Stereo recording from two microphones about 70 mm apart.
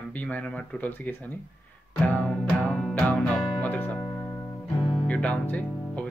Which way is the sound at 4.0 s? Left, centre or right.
Left.